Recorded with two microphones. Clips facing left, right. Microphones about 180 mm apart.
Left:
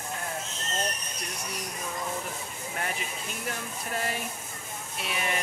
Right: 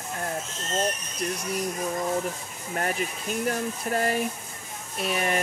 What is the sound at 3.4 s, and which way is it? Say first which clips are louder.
Speech: right 9 dB; 45° right (ahead or behind).